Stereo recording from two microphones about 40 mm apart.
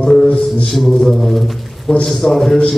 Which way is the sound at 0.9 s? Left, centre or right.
Centre.